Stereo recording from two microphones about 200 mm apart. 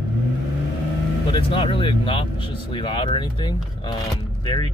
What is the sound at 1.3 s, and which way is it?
Speech, 25° left (ahead or behind).